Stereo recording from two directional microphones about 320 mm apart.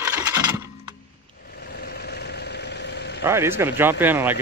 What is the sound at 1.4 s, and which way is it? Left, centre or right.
Vehicle, left.